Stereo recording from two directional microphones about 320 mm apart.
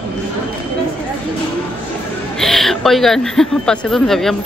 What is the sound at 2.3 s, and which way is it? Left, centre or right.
Speech, centre.